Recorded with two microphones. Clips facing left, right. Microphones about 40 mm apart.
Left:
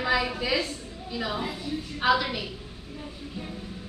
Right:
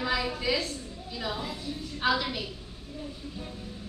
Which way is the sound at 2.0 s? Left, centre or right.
Centre.